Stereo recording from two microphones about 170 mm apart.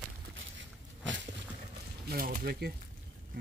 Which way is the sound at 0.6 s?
90° right.